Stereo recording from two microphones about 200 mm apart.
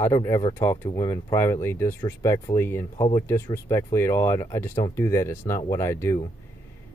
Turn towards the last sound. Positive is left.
turn(degrees=15)  # may be behind; listen again after turning